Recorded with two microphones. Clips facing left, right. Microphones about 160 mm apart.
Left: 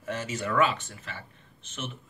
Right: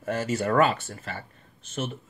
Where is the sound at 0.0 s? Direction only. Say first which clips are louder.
Right 6 dB; 40° right (ahead or behind).